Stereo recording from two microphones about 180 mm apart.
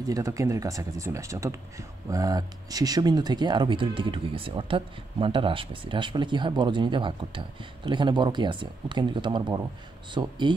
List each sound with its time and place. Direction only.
0.0 s speech: 20° right (ahead or behind)